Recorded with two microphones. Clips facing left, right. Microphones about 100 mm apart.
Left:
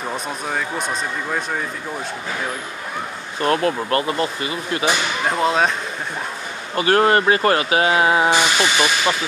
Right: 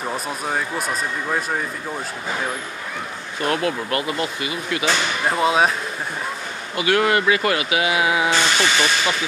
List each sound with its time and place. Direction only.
0.1 s speech: 5° right (ahead or behind)
3.4 s speech: 35° left (ahead or behind)
5.3 s speech: centre (ahead or behind)
6.7 s speech: 40° left (ahead or behind)
8.3 s speech: 15° left (ahead or behind)